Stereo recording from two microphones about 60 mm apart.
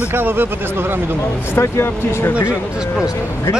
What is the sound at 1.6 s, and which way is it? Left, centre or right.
Speech, left.